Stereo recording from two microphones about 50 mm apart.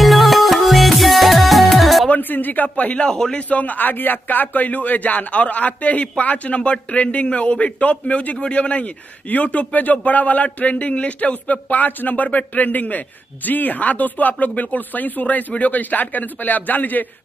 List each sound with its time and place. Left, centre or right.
0.0 s music: centre
2.0 s a man's voice: left
3.1 s a man's voice: centre
3.4 s a man's voice: left